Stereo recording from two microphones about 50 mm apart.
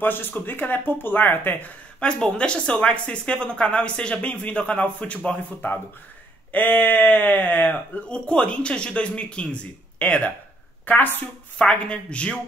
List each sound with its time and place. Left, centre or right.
0.0 s speech: left
2.0 s speech: centre
5.6 s speech: left
8.1 s speech: left
11.9 s speech: left